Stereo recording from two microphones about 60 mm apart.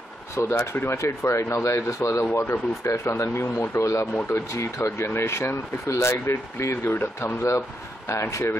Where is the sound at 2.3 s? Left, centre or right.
Left.